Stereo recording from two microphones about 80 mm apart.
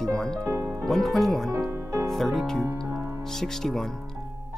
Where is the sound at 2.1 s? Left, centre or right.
Centre.